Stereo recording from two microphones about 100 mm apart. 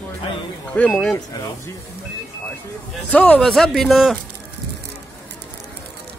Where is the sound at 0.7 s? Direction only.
10° left (ahead or behind).